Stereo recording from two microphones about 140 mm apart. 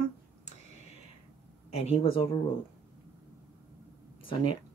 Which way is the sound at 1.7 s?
45° left (ahead or behind).